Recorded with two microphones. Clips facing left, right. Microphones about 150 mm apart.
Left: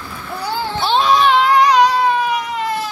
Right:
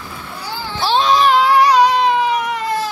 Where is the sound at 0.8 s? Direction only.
Centre (ahead or behind).